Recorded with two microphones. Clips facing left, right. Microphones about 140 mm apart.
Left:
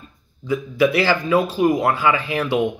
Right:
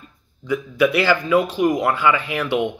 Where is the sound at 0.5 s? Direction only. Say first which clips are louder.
Even; 35° left (ahead or behind).